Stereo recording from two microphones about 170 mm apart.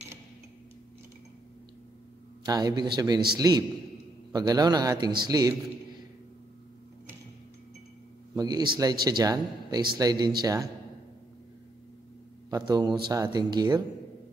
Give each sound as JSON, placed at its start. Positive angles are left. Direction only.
{"t": 2.4, "sound": "speech", "side_deg": -20}
{"t": 8.4, "sound": "speech", "side_deg": -25}
{"t": 12.4, "sound": "speech", "side_deg": -25}